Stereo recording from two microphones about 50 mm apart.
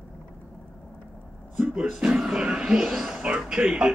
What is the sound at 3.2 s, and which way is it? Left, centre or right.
Speech, centre.